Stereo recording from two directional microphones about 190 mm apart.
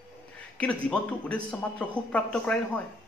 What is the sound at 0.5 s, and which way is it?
A woman's voice, 5° left (ahead or behind).